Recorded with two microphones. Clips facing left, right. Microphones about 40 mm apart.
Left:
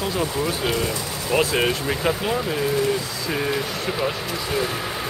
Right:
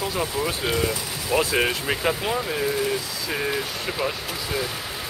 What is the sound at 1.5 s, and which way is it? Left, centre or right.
Speech, centre.